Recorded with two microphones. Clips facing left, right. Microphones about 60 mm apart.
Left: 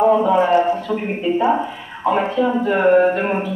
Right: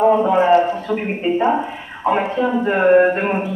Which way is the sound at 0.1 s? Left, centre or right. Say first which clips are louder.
Right 1 dB; right.